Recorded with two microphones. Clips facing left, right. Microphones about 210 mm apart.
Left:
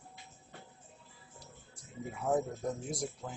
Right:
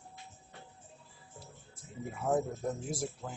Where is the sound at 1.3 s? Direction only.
Centre (ahead or behind).